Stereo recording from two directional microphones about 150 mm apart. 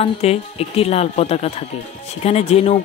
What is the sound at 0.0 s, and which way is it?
Speech, 45° left (ahead or behind).